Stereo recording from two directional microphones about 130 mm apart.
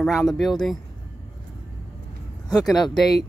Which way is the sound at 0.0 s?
Centre (ahead or behind).